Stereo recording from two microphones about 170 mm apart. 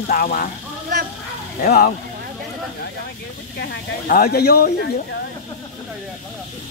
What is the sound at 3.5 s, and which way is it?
Speech, 65° left (ahead or behind).